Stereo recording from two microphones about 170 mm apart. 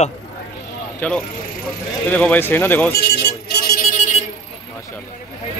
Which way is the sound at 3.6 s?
50° left (ahead or behind).